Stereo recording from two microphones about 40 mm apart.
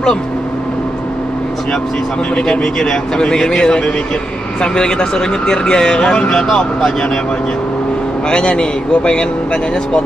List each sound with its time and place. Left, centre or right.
2.3 s speech: centre
6.5 s speech: centre
8.3 s speech: left